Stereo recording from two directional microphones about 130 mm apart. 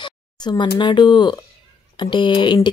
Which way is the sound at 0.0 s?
35° left (ahead or behind).